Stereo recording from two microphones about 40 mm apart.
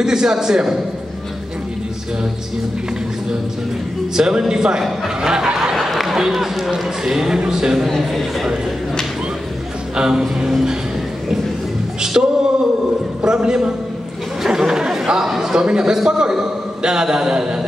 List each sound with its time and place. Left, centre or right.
0.0 s speech: centre
4.1 s speech: centre
5.8 s speech: centre
8.1 s speech: centre
9.9 s speech: centre
12.0 s a man's voice: centre